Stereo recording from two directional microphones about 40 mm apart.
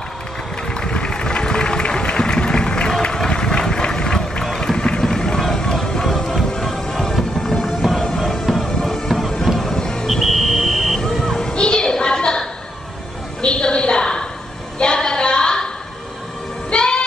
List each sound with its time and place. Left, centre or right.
0.7 s a sound: left
5.2 s music: centre
9.7 s music: centre
10.0 s buzzer: centre
11.2 s music: centre
13.4 s a sound: left
16.7 s music: left